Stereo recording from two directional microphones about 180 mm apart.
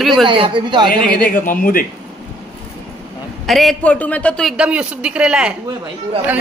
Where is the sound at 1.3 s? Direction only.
50° left (ahead or behind).